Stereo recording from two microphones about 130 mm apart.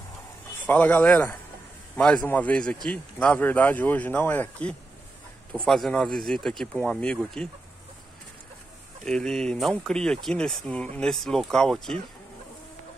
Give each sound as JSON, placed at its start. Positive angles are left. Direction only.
{"t": 0.7, "sound": "a man's voice", "side_deg": 10}
{"t": 9.0, "sound": "speech", "side_deg": 5}